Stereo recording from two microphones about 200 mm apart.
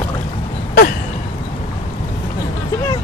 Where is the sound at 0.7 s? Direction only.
50° left (ahead or behind).